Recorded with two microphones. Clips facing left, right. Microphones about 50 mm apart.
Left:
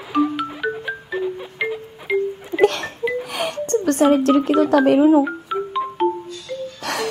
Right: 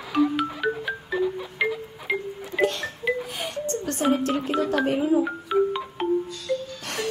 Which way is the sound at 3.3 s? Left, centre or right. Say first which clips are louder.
Left 7 dB; left.